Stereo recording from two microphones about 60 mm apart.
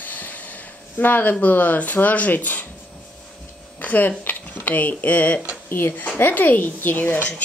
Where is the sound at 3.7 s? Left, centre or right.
Left.